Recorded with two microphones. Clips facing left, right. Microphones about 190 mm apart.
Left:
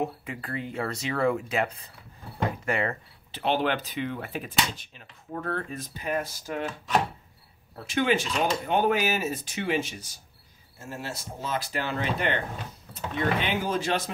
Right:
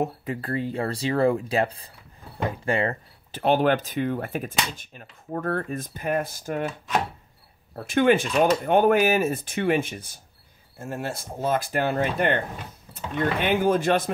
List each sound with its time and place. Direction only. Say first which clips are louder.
0.0 s speech: right 4 dB; 40° right (ahead or behind)
3.3 s speech: right 5 dB; 45° right (ahead or behind)
7.7 s speech: right 6 dB; 50° right (ahead or behind)